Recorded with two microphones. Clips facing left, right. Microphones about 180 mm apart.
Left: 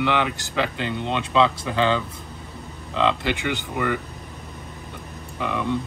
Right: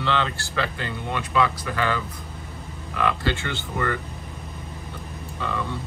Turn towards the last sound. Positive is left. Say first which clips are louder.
# left 4 dB
turn(degrees=15)  # may be behind; listen again after turning